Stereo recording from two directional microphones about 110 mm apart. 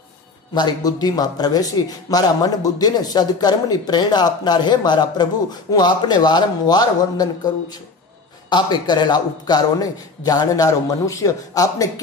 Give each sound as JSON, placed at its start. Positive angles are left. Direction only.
{"t": 0.6, "sound": "a man's voice", "side_deg": 35}